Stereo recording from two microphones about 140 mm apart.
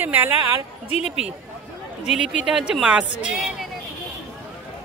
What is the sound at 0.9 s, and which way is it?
Speech, 45° left (ahead or behind).